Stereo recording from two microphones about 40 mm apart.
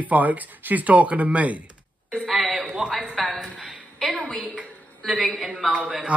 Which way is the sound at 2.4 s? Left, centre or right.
Centre.